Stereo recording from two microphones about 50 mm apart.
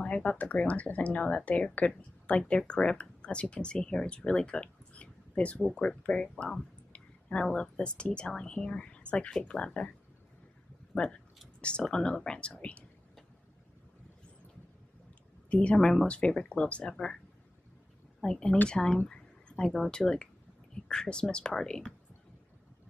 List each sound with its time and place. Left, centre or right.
0.0 s speech: left
6.9 s a sound: left
7.5 s speech: left
11.9 s speech: centre
15.5 s speech: left
15.8 s speech: centre
16.1 s speech: left
18.2 s speech: centre
19.0 s a sound: centre
19.9 s speech: centre